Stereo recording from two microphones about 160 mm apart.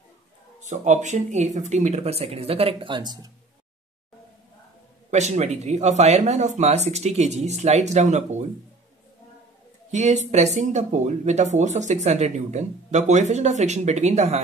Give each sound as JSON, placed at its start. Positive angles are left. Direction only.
{"t": 0.6, "sound": "speech", "side_deg": -50}
{"t": 5.1, "sound": "speech", "side_deg": -45}
{"t": 9.8, "sound": "speech", "side_deg": -45}